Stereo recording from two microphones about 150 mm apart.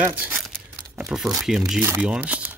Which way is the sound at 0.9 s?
5° right (ahead or behind).